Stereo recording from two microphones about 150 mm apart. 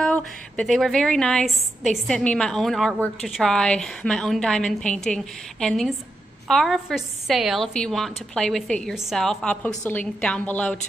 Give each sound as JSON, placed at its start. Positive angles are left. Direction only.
{"t": 0.0, "sound": "a woman's voice", "side_deg": 5}